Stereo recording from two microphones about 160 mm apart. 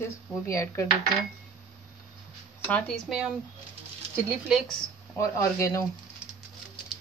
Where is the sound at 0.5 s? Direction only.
20° left (ahead or behind).